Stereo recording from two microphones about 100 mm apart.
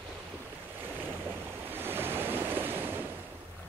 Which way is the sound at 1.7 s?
20° right (ahead or behind).